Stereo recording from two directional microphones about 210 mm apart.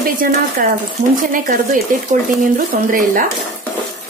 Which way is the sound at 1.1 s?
40° right (ahead or behind).